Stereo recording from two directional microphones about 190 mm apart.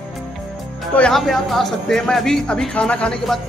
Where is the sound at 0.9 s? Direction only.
5° left (ahead or behind).